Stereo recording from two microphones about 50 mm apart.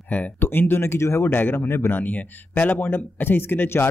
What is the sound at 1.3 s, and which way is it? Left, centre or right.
Speech, left.